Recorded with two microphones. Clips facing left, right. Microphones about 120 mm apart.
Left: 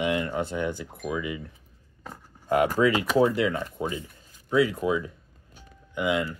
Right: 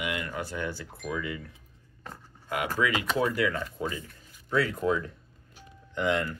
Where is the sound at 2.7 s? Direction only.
35° left (ahead or behind).